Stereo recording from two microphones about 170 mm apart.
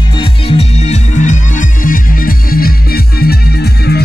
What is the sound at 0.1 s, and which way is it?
Music, 35° left (ahead or behind).